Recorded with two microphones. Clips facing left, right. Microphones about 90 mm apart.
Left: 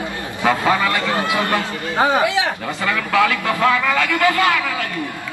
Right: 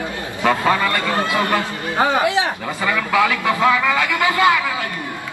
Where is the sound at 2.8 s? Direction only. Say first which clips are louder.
Even; 10° right (ahead or behind).